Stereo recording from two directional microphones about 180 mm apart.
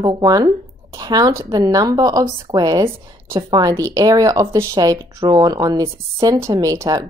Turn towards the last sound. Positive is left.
turn(degrees=-20)  # may be behind; listen again after turning